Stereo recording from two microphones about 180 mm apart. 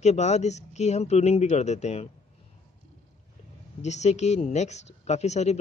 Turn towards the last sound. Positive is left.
turn(degrees=40)  # may be behind; listen again after turning